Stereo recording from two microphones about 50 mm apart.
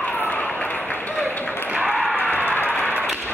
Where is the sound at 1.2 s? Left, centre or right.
Left.